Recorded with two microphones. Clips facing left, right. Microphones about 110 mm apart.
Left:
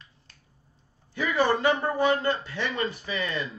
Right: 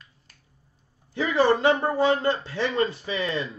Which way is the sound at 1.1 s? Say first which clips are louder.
Right 3 dB; 30° right (ahead or behind).